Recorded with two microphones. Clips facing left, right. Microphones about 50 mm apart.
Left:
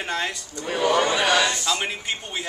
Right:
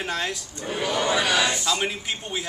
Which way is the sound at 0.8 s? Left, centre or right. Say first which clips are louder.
Left 6 dB; left.